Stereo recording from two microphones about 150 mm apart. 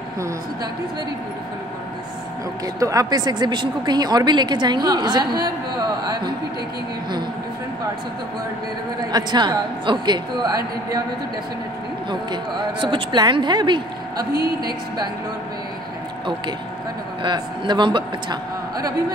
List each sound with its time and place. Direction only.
2.6 s speech: 25° right (ahead or behind)
9.1 s speech: 30° right (ahead or behind)
12.1 s speech: 30° right (ahead or behind)
14.3 s a woman's voice: 90° right
17.2 s speech: 30° right (ahead or behind)